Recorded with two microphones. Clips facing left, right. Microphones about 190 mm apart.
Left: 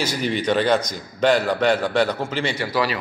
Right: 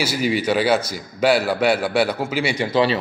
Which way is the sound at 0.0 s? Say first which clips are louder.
Right 2 dB; 5° right (ahead or behind).